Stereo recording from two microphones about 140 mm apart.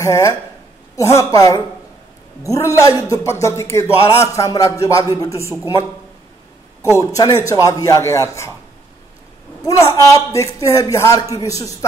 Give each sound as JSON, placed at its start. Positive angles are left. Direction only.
{"t": 0.0, "sound": "a man's voice", "side_deg": 20}
{"t": 6.8, "sound": "a man's voice", "side_deg": 20}
{"t": 9.7, "sound": "a man's voice", "side_deg": 25}